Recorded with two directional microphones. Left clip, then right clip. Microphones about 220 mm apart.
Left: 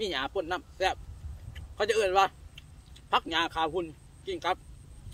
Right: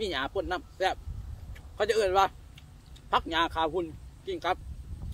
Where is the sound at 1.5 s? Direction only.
15° left (ahead or behind).